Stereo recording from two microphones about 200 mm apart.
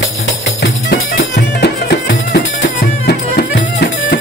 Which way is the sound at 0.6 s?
55° left (ahead or behind).